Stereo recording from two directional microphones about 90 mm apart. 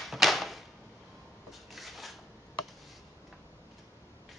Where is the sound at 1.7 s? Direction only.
Centre (ahead or behind).